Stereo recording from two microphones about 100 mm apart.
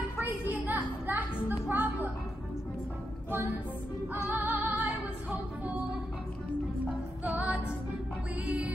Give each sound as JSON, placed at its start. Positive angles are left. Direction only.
{"t": 0.5, "sound": "music", "side_deg": -15}
{"t": 3.3, "sound": "music", "side_deg": -25}
{"t": 7.2, "sound": "music", "side_deg": -15}